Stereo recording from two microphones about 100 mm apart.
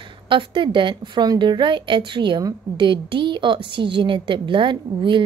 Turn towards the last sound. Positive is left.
turn(degrees=-55)  # may be behind; listen again after turning